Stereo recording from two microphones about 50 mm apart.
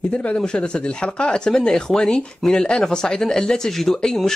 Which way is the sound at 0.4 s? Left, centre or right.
Centre.